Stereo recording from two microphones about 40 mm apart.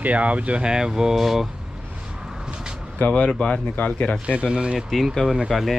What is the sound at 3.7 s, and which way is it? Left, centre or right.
Speech, left.